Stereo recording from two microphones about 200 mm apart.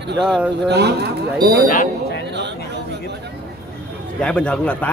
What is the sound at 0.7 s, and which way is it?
Speech, 55° right (ahead or behind).